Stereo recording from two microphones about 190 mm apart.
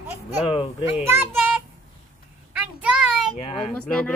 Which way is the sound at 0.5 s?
25° left (ahead or behind).